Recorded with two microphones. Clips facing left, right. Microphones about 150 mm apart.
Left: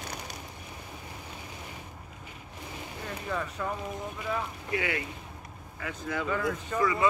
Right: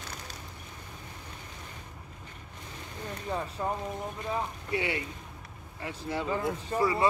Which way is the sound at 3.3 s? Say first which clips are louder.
Right 1 dB; 30° right (ahead or behind).